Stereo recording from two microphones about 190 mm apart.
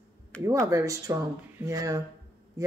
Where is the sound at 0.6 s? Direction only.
15° right (ahead or behind).